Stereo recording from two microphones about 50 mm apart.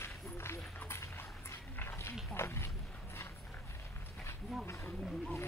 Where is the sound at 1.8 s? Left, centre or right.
Left.